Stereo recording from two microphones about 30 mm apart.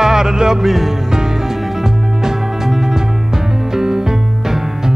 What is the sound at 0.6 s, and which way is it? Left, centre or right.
Music, centre.